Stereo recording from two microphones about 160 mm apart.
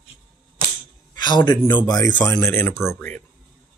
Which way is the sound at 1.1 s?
25° left (ahead or behind).